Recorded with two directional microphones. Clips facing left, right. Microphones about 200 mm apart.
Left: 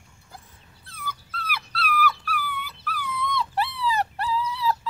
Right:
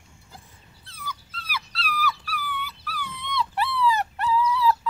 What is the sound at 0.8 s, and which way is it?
Dog, 55° left (ahead or behind).